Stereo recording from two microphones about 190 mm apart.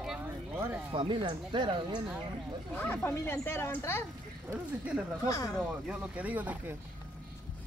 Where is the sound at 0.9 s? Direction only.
25° right (ahead or behind).